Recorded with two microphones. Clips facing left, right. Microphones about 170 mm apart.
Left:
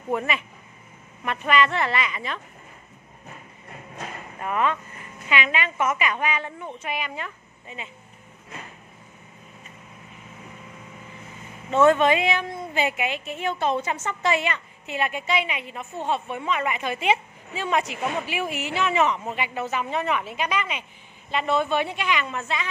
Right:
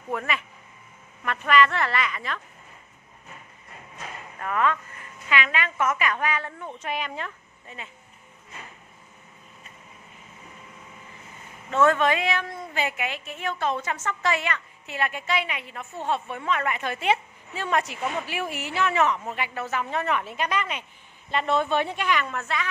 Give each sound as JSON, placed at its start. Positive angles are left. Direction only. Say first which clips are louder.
{"t": 0.1, "sound": "a woman's voice", "louder": "left 3 dB", "side_deg": 20}
{"t": 4.4, "sound": "a woman's voice", "louder": "even", "side_deg": 15}
{"t": 11.7, "sound": "a woman's voice", "louder": "left 3 dB", "side_deg": 20}